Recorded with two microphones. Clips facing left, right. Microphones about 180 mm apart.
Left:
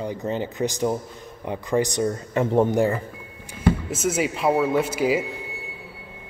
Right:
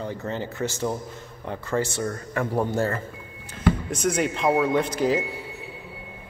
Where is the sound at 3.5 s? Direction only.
5° left (ahead or behind).